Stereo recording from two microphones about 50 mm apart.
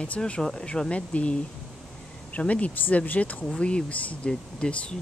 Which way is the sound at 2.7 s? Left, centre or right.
Left.